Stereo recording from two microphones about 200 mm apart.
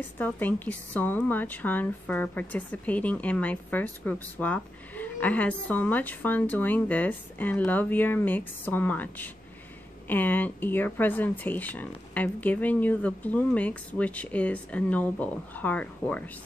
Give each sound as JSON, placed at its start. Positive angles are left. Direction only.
{"t": 0.2, "sound": "a woman's voice", "side_deg": 10}